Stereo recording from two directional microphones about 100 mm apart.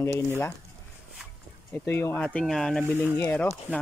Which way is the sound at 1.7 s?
25° left (ahead or behind).